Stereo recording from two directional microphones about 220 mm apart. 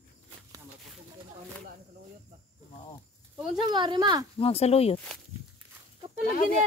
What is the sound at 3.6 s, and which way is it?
Speech, 20° right (ahead or behind).